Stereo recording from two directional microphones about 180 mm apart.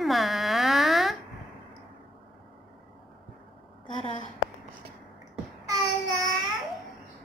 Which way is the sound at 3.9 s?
30° left (ahead or behind).